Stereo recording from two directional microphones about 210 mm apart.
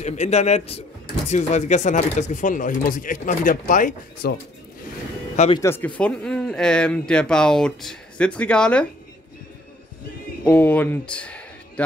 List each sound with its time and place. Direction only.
0.0 s speech: 35° left (ahead or behind)
5.6 s speech: 10° left (ahead or behind)
10.4 s speech: 10° left (ahead or behind)